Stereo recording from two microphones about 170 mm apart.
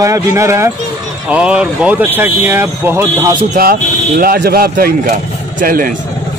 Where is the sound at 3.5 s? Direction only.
55° right (ahead or behind).